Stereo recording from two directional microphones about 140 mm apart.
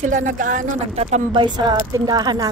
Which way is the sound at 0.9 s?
55° right (ahead or behind).